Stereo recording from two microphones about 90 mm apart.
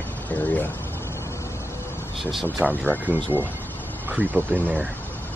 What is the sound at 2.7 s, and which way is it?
Speech, 20° left (ahead or behind).